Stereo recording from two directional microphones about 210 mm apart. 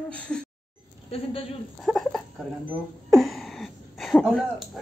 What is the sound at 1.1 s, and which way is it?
Speech, 30° left (ahead or behind).